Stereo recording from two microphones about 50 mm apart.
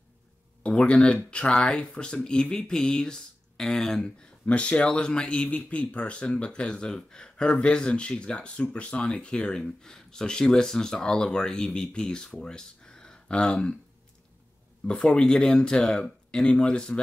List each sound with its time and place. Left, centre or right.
0.7 s speech: left
4.5 s speech: left
14.9 s speech: centre